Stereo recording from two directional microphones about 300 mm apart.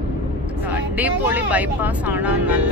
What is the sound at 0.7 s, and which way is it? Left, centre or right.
Speech, centre.